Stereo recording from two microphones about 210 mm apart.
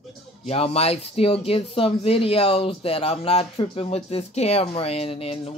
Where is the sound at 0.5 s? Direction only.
30° left (ahead or behind).